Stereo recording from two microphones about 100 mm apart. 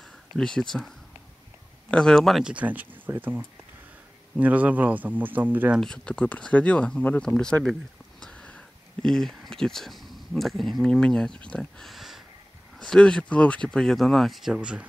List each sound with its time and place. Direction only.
0.4 s speech: 5° left (ahead or behind)
2.4 s speech: 15° right (ahead or behind)
5.8 s speech: 10° left (ahead or behind)
11.9 s a sound: 5° right (ahead or behind)
12.7 s speech: 5° left (ahead or behind)